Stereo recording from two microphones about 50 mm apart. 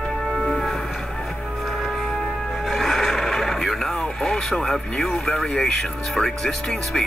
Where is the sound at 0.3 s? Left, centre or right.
Centre.